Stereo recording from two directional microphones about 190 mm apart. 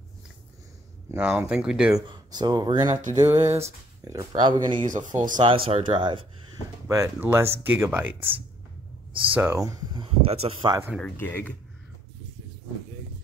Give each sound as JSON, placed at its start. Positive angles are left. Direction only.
{"t": 1.1, "sound": "speech", "side_deg": -10}
{"t": 2.0, "sound": "speech", "side_deg": -20}
{"t": 4.8, "sound": "speech", "side_deg": -40}
{"t": 5.4, "sound": "speech", "side_deg": -30}
{"t": 6.9, "sound": "speech", "side_deg": -15}
{"t": 9.3, "sound": "speech", "side_deg": -10}
{"t": 11.0, "sound": "speech", "side_deg": 10}